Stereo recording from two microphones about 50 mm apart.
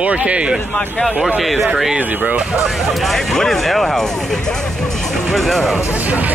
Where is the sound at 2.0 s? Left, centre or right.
Right.